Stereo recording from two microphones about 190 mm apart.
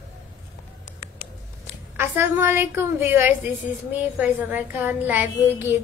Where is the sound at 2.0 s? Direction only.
10° right (ahead or behind).